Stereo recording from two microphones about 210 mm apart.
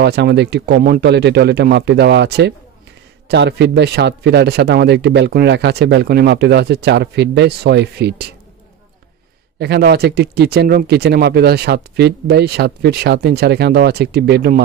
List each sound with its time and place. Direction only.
0.0 s speech: 50° right (ahead or behind)
9.6 s speech: 50° right (ahead or behind)